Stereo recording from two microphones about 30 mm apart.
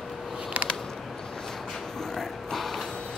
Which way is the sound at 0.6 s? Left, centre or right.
Right.